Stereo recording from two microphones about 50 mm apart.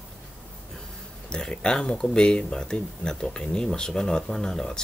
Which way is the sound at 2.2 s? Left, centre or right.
Centre.